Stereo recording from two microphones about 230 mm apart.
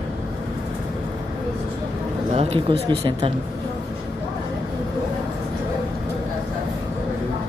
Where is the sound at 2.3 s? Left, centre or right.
Right.